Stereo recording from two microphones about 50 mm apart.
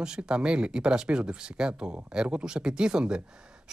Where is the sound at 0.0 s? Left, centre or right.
Centre.